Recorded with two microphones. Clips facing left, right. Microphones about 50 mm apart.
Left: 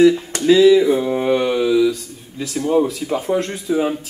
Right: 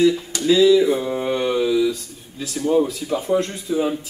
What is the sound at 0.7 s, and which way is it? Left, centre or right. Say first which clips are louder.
Speech: left 2 dB; left.